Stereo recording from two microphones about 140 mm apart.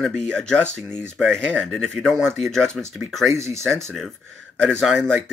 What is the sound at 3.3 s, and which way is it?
Speech, 20° right (ahead or behind).